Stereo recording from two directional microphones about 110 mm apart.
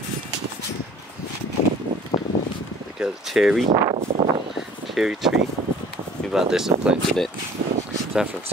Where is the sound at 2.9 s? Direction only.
5° right (ahead or behind).